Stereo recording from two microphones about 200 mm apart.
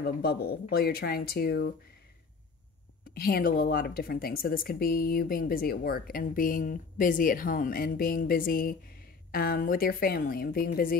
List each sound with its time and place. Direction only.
0.0 s a woman's voice: 50° left (ahead or behind)
3.2 s a woman's voice: 50° left (ahead or behind)